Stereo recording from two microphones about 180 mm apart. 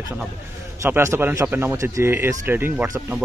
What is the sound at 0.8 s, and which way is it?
Speech, 15° right (ahead or behind).